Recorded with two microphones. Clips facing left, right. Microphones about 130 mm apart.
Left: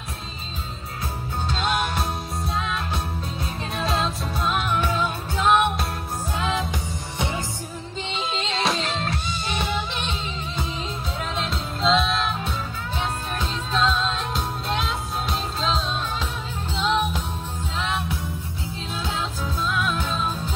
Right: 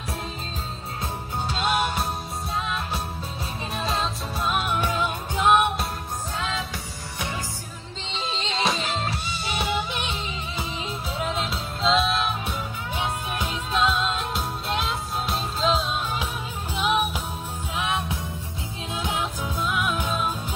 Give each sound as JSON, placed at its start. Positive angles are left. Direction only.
{"t": 1.5, "sound": "music", "side_deg": -5}
{"t": 3.7, "sound": "music", "side_deg": 0}
{"t": 4.6, "sound": "music", "side_deg": -15}
{"t": 8.1, "sound": "music", "side_deg": 5}